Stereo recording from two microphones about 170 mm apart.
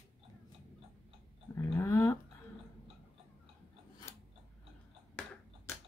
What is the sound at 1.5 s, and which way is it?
Dog, 15° left (ahead or behind).